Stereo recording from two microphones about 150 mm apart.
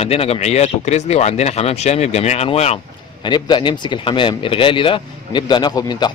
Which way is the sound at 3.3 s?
30° left (ahead or behind).